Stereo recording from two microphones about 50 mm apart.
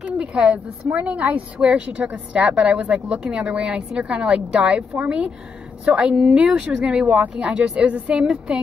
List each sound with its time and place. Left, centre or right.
0.0 s a sound: right
0.9 s a woman's voice: right
1.6 s a woman's voice: centre
5.9 s a woman's voice: right
7.0 s a woman's voice: right